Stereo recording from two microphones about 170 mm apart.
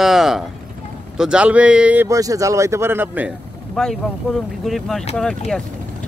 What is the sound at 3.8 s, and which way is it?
Speech, 5° left (ahead or behind).